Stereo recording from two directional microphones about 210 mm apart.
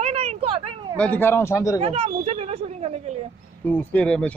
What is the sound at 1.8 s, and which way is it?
Speech, 30° right (ahead or behind).